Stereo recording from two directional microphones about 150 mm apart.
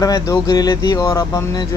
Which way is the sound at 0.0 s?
25° left (ahead or behind).